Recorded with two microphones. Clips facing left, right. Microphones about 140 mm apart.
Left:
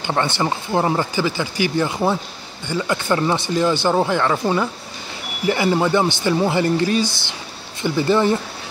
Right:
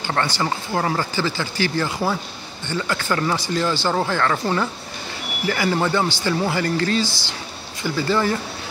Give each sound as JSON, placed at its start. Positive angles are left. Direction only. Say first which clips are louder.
{"t": 0.0, "sound": "speech", "louder": "left 2 dB", "side_deg": 15}